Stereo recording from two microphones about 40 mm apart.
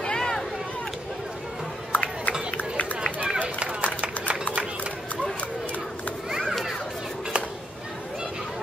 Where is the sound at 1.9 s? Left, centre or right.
Left.